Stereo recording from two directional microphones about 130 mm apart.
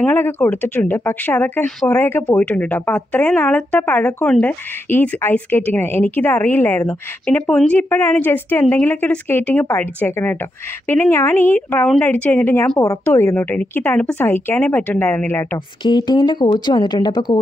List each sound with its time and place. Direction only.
0.0 s a woman's voice: 15° left (ahead or behind)
15.8 s speech: 35° left (ahead or behind)